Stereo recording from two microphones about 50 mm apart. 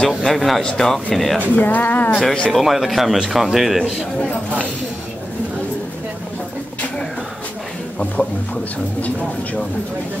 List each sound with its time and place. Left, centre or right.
0.2 s speech: centre
1.6 s speech: left
2.5 s speech: centre
8.2 s speech: left